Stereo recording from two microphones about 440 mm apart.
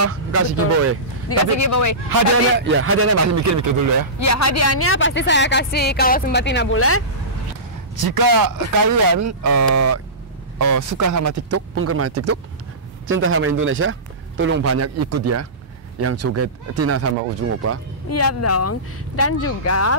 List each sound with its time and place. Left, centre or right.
0.0 s a man's voice: right
1.6 s speech: left
2.5 s a man's voice: right
4.2 s a woman's voice: left
7.9 s a man's voice: right
18.1 s speech: left